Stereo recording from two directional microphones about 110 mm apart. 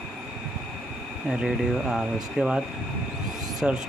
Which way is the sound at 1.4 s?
5° right (ahead or behind).